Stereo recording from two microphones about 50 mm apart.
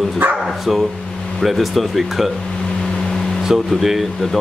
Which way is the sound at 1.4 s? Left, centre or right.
Centre.